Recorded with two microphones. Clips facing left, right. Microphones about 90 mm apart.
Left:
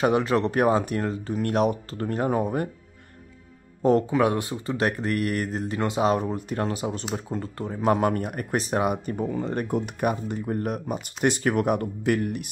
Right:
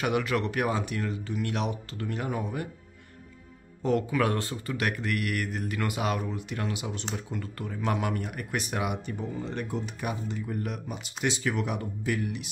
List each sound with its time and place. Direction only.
0.0 s speech: 30° left (ahead or behind)
3.8 s speech: 30° left (ahead or behind); by 4.7 s 15° left (ahead or behind)
4.7 s speech: 35° left (ahead or behind); by 12.4 s 55° left (ahead or behind)